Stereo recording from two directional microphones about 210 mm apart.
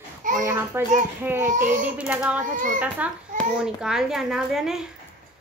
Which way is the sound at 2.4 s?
40° right (ahead or behind).